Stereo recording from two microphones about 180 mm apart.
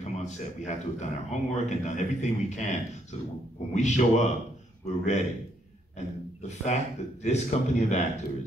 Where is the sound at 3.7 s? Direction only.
40° left (ahead or behind).